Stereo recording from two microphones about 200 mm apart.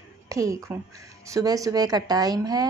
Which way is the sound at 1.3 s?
15° right (ahead or behind).